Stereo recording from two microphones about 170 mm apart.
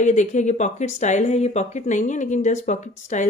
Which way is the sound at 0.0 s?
45° left (ahead or behind).